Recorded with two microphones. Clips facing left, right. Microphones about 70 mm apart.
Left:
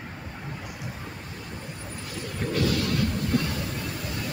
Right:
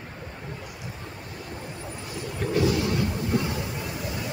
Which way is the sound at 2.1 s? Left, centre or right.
Centre.